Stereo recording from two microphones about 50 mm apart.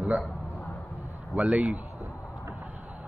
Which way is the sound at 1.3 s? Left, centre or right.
Right.